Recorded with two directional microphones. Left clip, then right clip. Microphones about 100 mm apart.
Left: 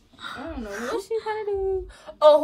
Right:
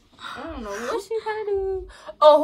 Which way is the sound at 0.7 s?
10° left (ahead or behind).